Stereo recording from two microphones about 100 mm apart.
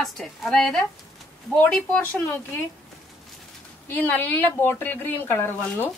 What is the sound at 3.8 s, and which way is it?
Speech, 20° left (ahead or behind).